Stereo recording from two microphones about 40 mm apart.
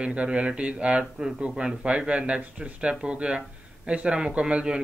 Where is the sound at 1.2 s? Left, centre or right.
Centre.